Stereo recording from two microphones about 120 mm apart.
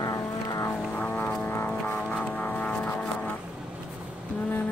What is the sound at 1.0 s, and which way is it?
Vehicle, 15° left (ahead or behind).